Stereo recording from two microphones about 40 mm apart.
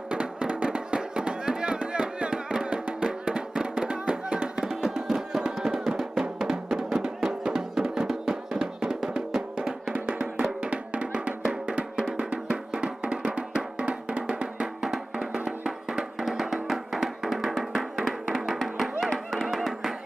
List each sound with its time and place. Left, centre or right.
0.1 s music: right
4.6 s music: centre
10.4 s music: right
14.8 s music: centre
16.2 s music: centre